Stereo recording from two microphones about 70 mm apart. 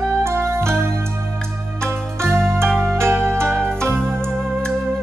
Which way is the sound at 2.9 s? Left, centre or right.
Right.